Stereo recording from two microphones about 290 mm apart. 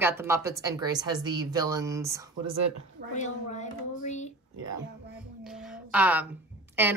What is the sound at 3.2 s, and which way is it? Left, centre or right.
Speech, left.